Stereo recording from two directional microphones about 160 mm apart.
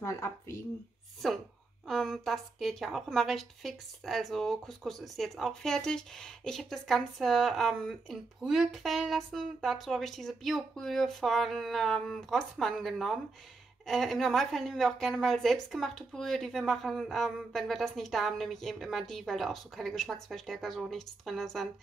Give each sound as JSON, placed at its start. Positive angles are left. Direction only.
{"t": 0.0, "sound": "speech", "side_deg": 15}
{"t": 1.9, "sound": "a woman's voice", "side_deg": 0}